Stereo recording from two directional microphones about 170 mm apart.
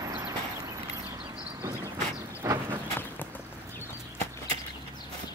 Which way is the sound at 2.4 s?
15° right (ahead or behind).